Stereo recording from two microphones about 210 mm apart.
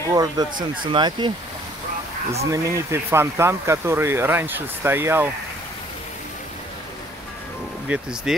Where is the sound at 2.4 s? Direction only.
15° right (ahead or behind).